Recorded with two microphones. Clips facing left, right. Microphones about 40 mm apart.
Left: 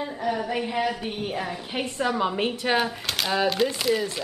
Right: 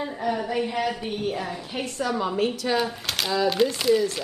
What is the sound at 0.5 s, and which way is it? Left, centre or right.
A woman's voice, centre.